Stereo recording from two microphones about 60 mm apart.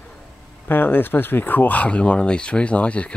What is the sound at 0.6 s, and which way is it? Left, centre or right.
Speech, left.